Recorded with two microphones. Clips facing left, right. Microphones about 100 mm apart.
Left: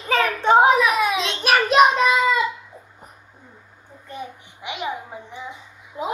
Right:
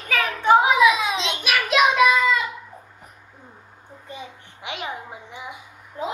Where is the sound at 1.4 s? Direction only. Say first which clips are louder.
Left 5 dB; 40° left (ahead or behind).